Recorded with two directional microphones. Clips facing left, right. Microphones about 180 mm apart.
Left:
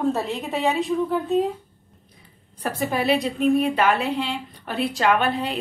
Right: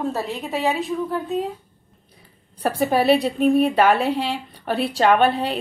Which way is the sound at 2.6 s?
35° right (ahead or behind).